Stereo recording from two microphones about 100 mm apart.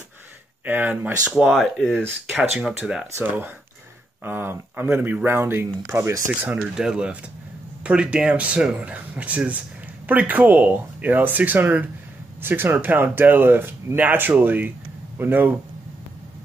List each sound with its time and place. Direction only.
0.7 s speech: 20° right (ahead or behind)
1.3 s speech: centre (ahead or behind)
1.8 s speech: 10° left (ahead or behind)
2.6 s speech: 10° right (ahead or behind)
3.2 s speech: 20° right (ahead or behind)
6.5 s speech: 5° right (ahead or behind)